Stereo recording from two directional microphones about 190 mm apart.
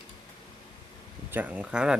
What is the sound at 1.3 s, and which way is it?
Speech, 10° right (ahead or behind).